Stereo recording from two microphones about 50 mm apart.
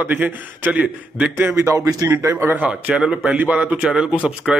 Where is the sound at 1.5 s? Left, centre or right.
Right.